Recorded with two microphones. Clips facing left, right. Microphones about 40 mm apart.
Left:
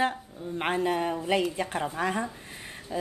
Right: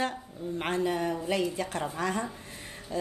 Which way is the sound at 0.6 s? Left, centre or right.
Left.